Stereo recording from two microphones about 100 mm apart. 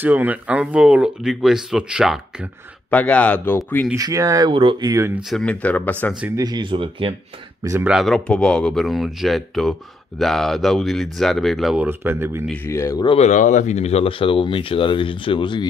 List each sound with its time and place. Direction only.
0.0 s speech: 20° right (ahead or behind)
2.9 s speech: 15° left (ahead or behind)
3.9 s speech: 35° right (ahead or behind)
4.5 s speech: 60° right (ahead or behind)
4.7 s speech: 40° right (ahead or behind)
5.3 s speech: 10° left (ahead or behind)
6.3 s speech: 45° right (ahead or behind); by 7.2 s 60° right (ahead or behind)
7.8 s speech: 5° right (ahead or behind)
8.3 s speech: 10° left (ahead or behind)
11.7 s speech: 20° right (ahead or behind)
12.6 s speech: 30° left (ahead or behind)
13.0 s speech: 65° left (ahead or behind)
13.7 s speech: 90° left; by 15.6 s 55° left (ahead or behind)